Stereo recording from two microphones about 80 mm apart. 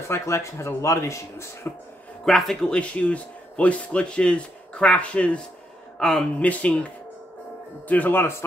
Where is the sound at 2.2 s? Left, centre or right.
Centre.